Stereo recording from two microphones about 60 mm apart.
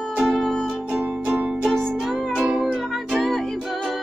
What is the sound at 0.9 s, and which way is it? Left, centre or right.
Music, right.